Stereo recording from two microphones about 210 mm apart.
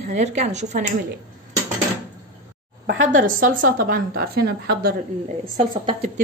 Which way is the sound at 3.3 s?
40° right (ahead or behind).